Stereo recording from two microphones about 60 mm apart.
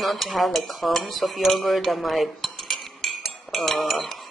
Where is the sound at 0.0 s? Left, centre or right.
Centre.